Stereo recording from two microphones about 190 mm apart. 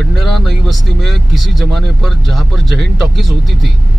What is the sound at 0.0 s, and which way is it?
Speech, centre (ahead or behind).